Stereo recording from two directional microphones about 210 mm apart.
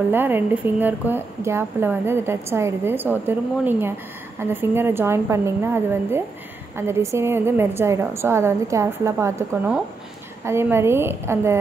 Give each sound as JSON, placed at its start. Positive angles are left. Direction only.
{"t": 0.1, "sound": "a woman's voice", "side_deg": -10}